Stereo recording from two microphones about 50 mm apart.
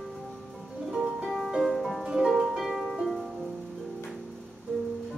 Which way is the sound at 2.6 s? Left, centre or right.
Centre.